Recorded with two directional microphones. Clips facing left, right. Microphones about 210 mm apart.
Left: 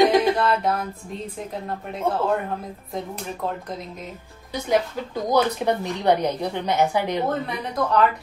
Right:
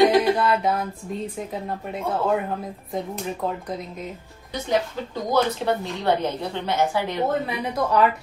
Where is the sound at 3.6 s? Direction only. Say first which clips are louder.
Right 2 dB; centre (ahead or behind).